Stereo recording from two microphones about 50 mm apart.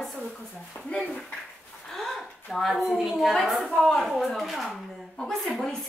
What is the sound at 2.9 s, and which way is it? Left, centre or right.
A woman's voice, centre.